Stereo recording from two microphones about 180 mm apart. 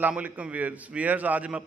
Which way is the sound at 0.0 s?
5° right (ahead or behind).